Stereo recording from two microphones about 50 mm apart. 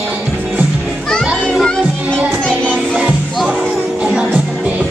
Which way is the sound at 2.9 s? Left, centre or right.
Right.